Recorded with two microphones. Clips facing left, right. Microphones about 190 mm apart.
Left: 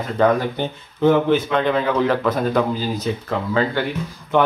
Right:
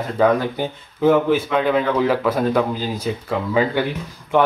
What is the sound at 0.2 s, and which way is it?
Speech, 5° right (ahead or behind).